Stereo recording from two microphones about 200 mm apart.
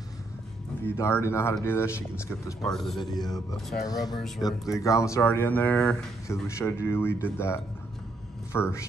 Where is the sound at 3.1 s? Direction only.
20° left (ahead or behind).